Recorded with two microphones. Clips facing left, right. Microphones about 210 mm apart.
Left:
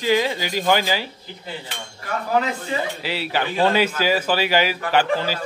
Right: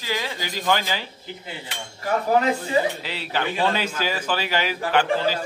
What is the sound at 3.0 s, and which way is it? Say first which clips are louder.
A man's voice: left 3 dB; 10° left (ahead or behind).